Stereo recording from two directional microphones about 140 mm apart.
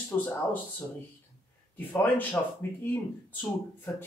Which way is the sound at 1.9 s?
10° left (ahead or behind).